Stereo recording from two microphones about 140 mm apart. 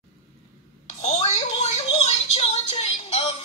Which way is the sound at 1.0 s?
55° left (ahead or behind).